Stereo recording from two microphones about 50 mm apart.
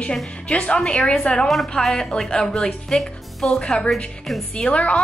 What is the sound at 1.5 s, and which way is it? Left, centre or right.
A woman's voice, centre.